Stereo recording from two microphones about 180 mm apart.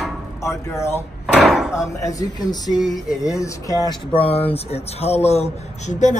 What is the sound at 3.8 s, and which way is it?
Speech, 30° left (ahead or behind).